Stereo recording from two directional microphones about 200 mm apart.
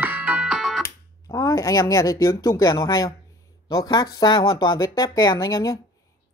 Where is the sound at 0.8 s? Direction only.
20° left (ahead or behind).